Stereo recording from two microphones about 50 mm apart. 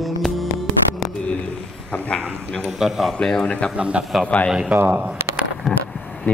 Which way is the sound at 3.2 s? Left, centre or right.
Centre.